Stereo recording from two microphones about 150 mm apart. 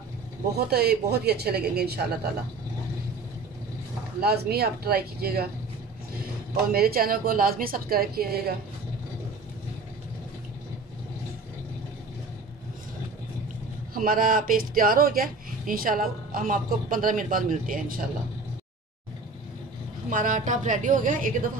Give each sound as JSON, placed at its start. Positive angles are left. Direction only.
{"t": 0.6, "sound": "a woman's voice", "side_deg": -90}
{"t": 4.2, "sound": "a woman's voice", "side_deg": -90}
{"t": 6.7, "sound": "a woman's voice", "side_deg": -90}
{"t": 13.9, "sound": "speech", "side_deg": -70}
{"t": 20.1, "sound": "a woman's voice", "side_deg": -65}